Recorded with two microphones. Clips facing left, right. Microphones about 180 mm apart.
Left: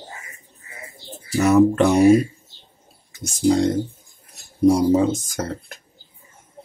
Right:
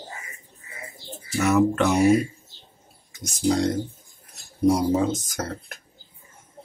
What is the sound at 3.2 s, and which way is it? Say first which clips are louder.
Speech: left 5 dB; 30° left (ahead or behind).